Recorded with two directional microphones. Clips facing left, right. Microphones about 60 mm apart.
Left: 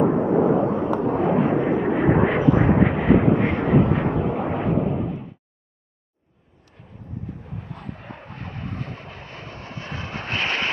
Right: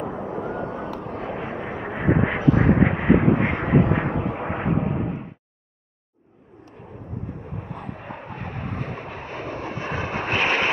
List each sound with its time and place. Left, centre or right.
0.0 s vehicle: left
1.2 s a sound: centre
1.8 s vehicle: centre
2.8 s vehicle: centre; by 5.2 s right
7.4 s vehicle: right